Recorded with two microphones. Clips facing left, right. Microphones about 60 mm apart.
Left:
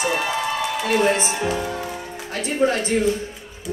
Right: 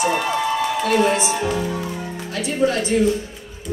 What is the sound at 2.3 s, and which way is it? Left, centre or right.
Speech, left.